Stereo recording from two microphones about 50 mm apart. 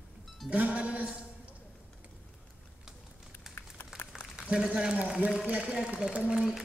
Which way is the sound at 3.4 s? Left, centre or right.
Centre.